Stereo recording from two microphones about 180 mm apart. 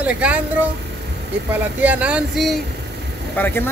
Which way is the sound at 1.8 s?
10° right (ahead or behind).